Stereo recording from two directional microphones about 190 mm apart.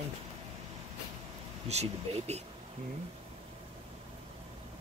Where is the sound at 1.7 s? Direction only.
35° right (ahead or behind).